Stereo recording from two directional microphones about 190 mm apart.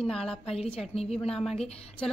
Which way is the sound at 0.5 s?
30° left (ahead or behind).